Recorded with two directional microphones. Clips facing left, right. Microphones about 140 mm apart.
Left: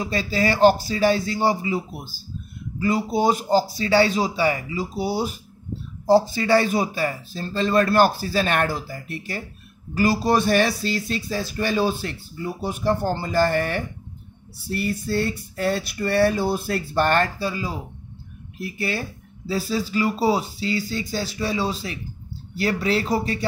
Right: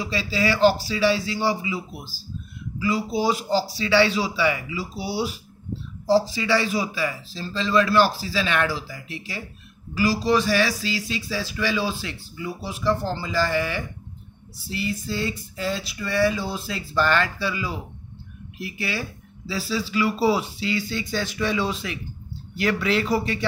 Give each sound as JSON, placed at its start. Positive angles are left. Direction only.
{"t": 0.0, "sound": "speech", "side_deg": 50}
{"t": 12.6, "sound": "a sound", "side_deg": 55}
{"t": 18.6, "sound": "speech", "side_deg": 45}